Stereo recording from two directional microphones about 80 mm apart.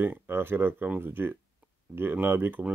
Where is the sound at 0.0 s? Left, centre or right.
Right.